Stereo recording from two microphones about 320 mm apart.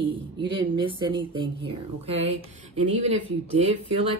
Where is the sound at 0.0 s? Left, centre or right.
Centre.